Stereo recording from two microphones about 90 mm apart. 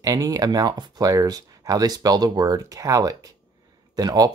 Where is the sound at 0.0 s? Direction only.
40° right (ahead or behind).